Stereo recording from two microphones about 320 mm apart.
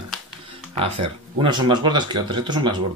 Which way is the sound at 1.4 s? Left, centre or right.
Centre.